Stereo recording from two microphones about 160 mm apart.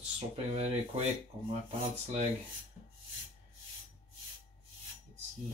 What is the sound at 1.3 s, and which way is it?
Speech, 30° right (ahead or behind).